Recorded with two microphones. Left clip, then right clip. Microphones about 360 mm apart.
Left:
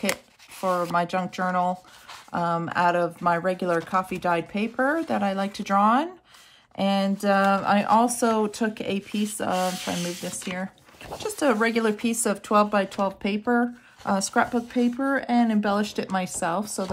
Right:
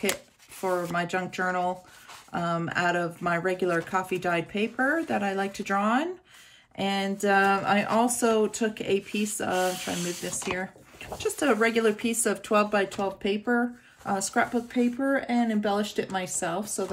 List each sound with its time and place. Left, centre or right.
0.6 s speech: centre